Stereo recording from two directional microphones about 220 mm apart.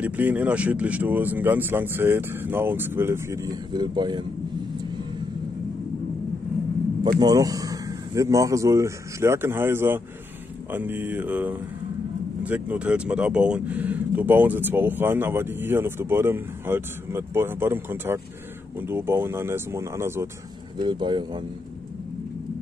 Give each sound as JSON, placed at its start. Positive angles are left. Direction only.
{"t": 0.0, "sound": "speech", "side_deg": -5}
{"t": 7.2, "sound": "speech", "side_deg": -15}